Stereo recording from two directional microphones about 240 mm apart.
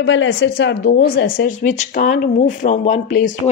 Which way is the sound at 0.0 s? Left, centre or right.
Left.